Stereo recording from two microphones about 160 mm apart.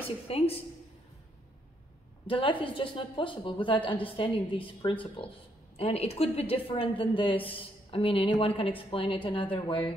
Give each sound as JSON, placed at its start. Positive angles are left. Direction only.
{"t": 0.3, "sound": "a woman's voice", "side_deg": 35}
{"t": 2.2, "sound": "a woman's voice", "side_deg": 35}